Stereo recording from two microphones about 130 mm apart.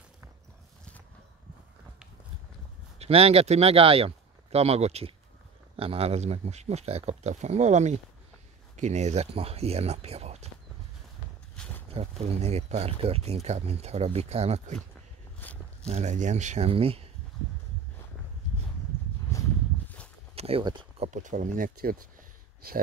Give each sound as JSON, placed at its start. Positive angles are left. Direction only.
{"t": 3.0, "sound": "speech", "side_deg": -50}
{"t": 11.5, "sound": "a sound", "side_deg": 10}
{"t": 11.9, "sound": "speech", "side_deg": -50}
{"t": 15.4, "sound": "speech", "side_deg": 15}
{"t": 15.9, "sound": "speech", "side_deg": -60}
{"t": 16.6, "sound": "speech", "side_deg": -45}
{"t": 20.3, "sound": "a sound", "side_deg": -50}
{"t": 21.1, "sound": "speech", "side_deg": -75}